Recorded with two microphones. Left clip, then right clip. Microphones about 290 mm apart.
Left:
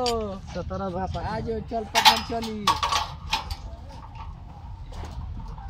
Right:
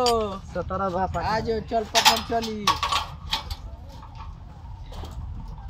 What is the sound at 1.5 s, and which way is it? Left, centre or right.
Speech, right.